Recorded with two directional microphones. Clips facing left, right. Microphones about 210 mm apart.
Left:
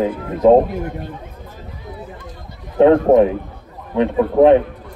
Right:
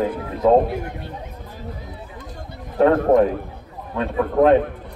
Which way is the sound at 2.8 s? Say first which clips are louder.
Left 4 dB; 20° left (ahead or behind).